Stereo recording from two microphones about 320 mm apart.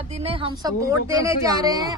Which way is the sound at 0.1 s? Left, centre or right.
Centre.